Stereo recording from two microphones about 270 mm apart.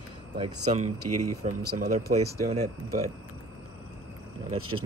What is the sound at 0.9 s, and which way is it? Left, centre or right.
Speech, right.